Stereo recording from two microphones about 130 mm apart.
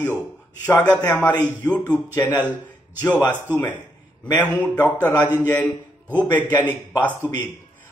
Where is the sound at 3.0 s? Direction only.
15° left (ahead or behind).